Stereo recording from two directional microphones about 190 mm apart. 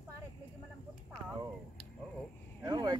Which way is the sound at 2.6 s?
20° right (ahead or behind).